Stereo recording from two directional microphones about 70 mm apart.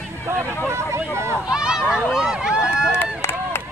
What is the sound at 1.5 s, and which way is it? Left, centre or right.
Speech, centre.